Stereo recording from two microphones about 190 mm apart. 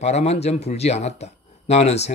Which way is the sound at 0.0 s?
35° left (ahead or behind).